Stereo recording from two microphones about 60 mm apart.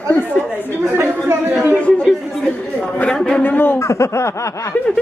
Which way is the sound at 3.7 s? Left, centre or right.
Left.